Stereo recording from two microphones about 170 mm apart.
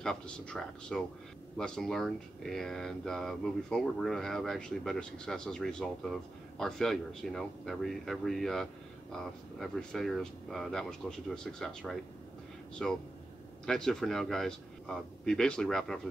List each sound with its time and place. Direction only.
0.0 s speech: 5° left (ahead or behind)